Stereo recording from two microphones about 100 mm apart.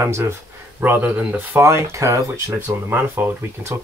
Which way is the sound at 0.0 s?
25° right (ahead or behind).